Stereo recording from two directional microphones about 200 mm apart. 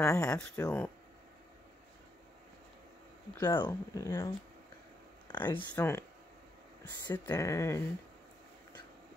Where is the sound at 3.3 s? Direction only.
20° left (ahead or behind).